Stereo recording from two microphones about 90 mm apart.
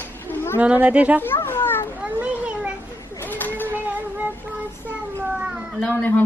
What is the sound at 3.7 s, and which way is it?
Child singing, 20° right (ahead or behind).